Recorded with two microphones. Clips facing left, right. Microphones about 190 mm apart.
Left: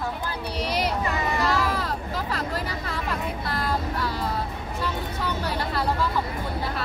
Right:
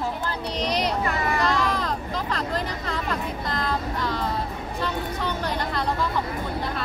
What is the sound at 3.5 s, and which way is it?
Music, 5° left (ahead or behind).